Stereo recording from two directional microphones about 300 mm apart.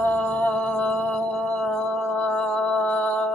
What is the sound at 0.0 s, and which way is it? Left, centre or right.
Mantra, centre.